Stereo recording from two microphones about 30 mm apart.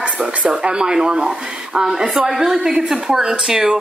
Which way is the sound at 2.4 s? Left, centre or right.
Centre.